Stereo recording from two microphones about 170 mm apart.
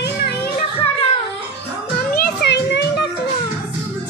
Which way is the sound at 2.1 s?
90° left.